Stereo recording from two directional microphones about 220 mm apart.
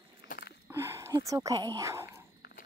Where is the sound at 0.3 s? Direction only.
45° left (ahead or behind).